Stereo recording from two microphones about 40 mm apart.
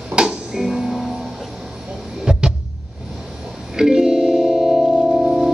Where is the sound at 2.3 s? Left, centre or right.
Centre.